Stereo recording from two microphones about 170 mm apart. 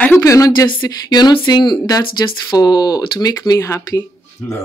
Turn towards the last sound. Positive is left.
turn(degrees=15)  # may be behind; listen again after turning